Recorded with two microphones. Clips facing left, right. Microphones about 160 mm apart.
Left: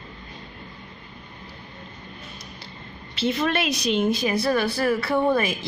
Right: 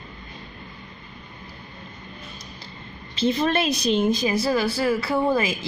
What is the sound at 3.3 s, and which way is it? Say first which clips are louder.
Speech: right 2 dB; 35° right (ahead or behind).